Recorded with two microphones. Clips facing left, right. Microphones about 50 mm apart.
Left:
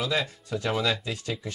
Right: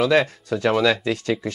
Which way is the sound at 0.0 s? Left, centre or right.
Right.